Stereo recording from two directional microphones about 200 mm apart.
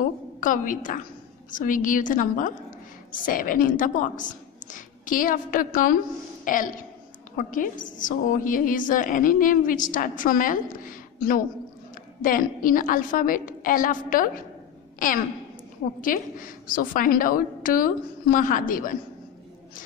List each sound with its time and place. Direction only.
0.4 s a woman's voice: 40° left (ahead or behind)
16.0 s a woman's voice: 45° left (ahead or behind)